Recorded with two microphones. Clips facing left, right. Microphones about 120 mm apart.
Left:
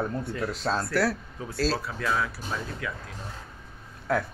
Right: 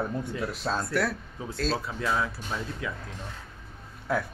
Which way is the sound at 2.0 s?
20° right (ahead or behind).